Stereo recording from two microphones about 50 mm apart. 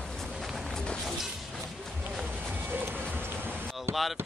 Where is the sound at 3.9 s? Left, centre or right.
Right.